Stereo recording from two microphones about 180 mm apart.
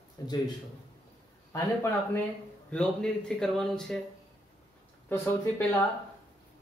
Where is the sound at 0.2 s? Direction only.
20° left (ahead or behind).